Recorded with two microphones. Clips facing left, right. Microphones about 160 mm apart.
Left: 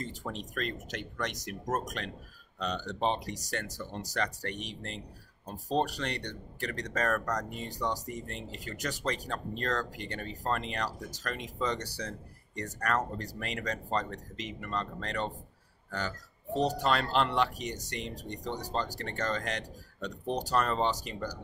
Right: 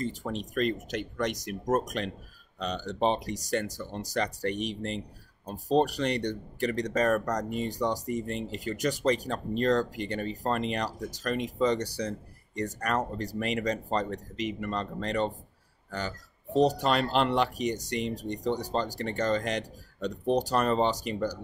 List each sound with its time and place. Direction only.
0.3 s speech: 15° right (ahead or behind)
16.5 s speech: 15° right (ahead or behind)